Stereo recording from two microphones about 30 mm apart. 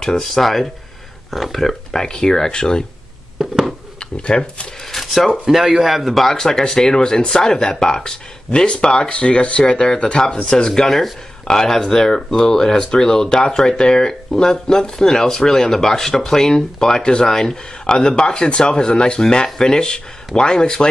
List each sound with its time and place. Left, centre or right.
0.3 s speech: centre
2.0 s speech: left
4.3 s speech: left
5.0 s speech: centre
5.5 s a man's voice: centre
6.0 s speech: centre
6.3 s speech: centre
10.7 s speech: centre
17.0 s speech: left
17.3 s speech: centre
17.8 s speech: left